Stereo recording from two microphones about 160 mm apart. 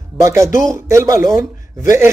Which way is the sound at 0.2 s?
20° right (ahead or behind).